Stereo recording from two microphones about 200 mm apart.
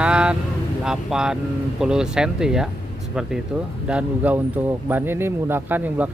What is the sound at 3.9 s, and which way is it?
Speech, 5° right (ahead or behind).